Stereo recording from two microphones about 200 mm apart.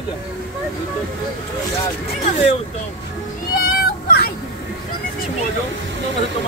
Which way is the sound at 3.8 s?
50° left (ahead or behind).